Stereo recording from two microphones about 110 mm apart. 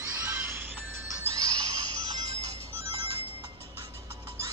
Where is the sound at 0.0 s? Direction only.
20° right (ahead or behind).